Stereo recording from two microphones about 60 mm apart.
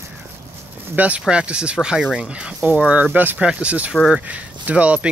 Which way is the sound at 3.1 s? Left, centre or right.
Right.